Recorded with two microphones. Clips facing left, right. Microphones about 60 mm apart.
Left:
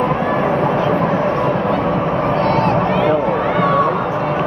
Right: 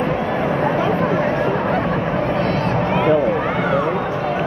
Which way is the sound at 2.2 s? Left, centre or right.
Left.